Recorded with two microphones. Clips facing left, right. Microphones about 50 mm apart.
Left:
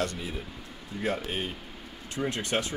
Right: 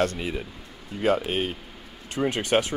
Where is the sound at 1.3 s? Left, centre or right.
Right.